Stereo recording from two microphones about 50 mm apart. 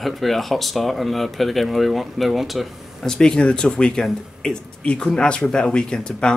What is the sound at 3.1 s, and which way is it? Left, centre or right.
Speech, centre.